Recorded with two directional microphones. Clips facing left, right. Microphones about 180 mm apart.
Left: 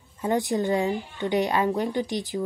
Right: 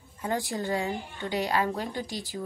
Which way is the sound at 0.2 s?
20° left (ahead or behind).